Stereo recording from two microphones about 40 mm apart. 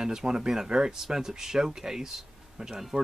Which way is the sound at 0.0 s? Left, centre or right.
Centre.